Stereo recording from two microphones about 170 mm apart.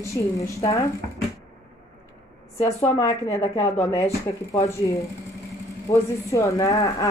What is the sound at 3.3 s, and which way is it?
Speech, 20° left (ahead or behind).